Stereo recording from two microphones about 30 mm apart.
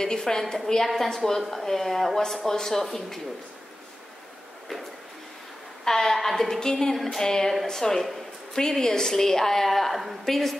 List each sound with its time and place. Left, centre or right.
0.2 s a woman's voice: centre
5.9 s a woman's voice: centre
8.5 s a woman's voice: left